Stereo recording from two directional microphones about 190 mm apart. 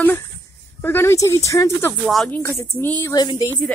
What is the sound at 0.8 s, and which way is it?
A woman's voice, 10° left (ahead or behind).